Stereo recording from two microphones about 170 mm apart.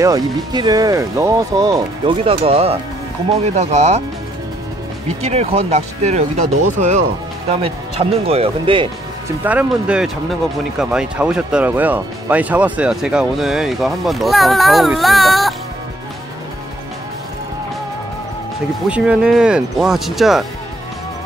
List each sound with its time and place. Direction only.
0.0 s speech: 20° right (ahead or behind); by 4.0 s 40° right (ahead or behind)
5.0 s speech: 35° right (ahead or behind)
9.4 s speech: 10° right (ahead or behind)
18.9 s speech: 5° right (ahead or behind)